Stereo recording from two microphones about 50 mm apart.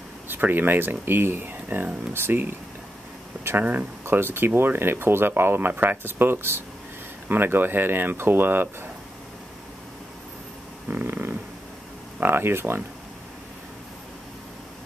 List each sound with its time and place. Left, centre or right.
0.3 s speech: right
4.1 s speech: right
10.9 s snoring: right
12.2 s speech: right